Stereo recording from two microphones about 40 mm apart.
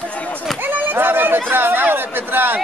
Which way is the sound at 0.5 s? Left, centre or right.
Right.